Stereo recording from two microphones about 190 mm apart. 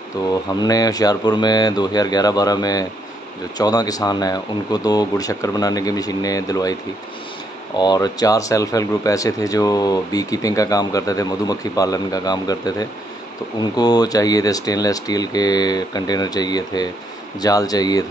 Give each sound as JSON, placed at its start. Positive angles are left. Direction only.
{"t": 0.3, "sound": "speech", "side_deg": 20}
{"t": 7.8, "sound": "speech", "side_deg": 20}